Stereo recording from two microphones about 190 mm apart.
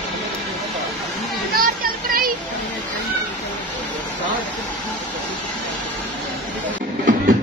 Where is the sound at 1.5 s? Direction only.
50° right (ahead or behind).